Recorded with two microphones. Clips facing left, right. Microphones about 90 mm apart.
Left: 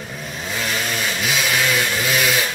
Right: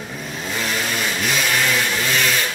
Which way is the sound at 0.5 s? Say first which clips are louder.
Even; centre (ahead or behind).